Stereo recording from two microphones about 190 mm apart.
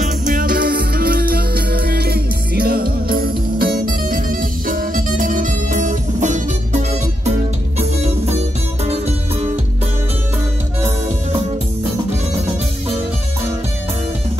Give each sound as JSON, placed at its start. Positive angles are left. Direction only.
{"t": 0.0, "sound": "music", "side_deg": -45}
{"t": 8.8, "sound": "music", "side_deg": -35}